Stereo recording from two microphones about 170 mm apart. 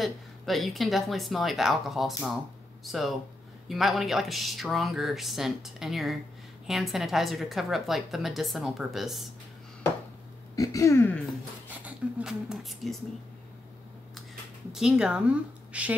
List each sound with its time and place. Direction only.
0.0 s a woman's voice: centre (ahead or behind)
10.5 s a sound: 20° left (ahead or behind)
11.8 s speech: 5° right (ahead or behind)
14.7 s a woman's voice: 5° right (ahead or behind)